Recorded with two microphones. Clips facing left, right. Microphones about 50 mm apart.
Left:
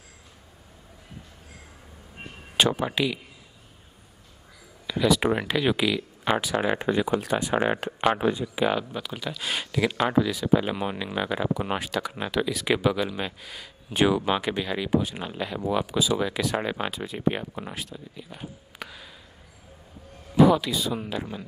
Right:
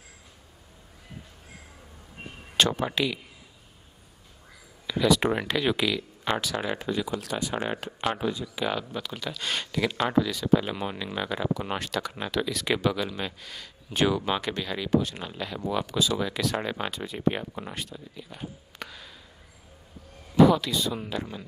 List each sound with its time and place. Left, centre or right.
2.5 s speech: centre
4.8 s speech: centre
6.8 s speech: left
8.6 s speech: centre
20.3 s speech: centre